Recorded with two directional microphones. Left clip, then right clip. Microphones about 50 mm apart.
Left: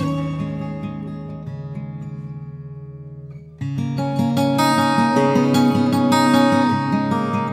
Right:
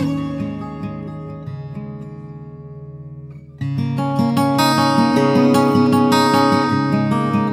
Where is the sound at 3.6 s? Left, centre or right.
Right.